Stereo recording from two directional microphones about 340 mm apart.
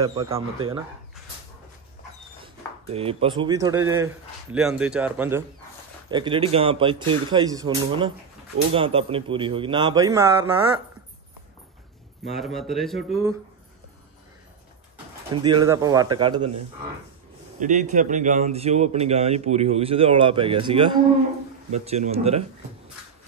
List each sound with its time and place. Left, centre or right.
0.0 s speech: centre
2.4 s speech: centre
12.3 s speech: centre
15.4 s speech: centre
17.6 s speech: right